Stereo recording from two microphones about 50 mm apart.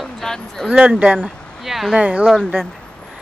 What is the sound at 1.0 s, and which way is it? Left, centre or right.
Speech, right.